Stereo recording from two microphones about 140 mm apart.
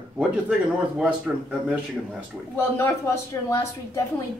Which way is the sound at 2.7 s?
20° left (ahead or behind).